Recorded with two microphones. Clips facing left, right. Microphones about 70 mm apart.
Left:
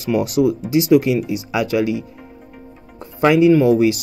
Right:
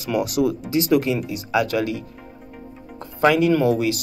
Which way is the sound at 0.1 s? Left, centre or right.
Left.